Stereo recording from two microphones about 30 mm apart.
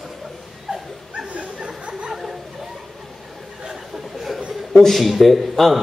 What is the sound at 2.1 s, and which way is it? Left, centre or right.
Chatter, centre.